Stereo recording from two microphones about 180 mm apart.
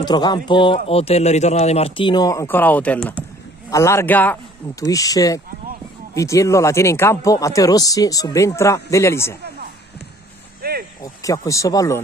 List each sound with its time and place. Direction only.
0.0 s speech: 25° left (ahead or behind)
10.6 s a sound: 60° right (ahead or behind)
11.0 s speech: 20° left (ahead or behind)